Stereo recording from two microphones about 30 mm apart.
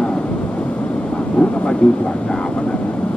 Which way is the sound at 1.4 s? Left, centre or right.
Left.